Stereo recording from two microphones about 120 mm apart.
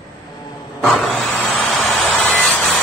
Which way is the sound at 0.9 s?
5° left (ahead or behind).